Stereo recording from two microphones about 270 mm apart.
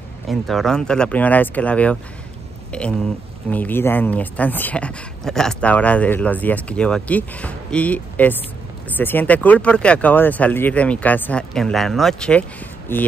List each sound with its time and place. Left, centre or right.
0.3 s speech: centre